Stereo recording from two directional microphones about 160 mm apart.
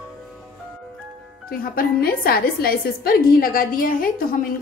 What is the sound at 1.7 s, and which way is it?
A woman's voice, 65° left (ahead or behind).